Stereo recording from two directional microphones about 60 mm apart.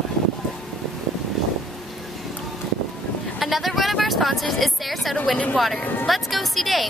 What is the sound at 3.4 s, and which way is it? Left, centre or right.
Speech, centre.